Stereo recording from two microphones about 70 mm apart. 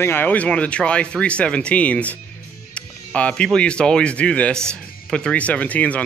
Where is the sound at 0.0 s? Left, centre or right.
Left.